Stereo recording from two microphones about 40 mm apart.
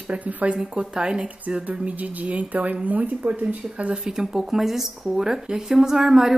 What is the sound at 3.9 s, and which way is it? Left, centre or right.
Speech, centre.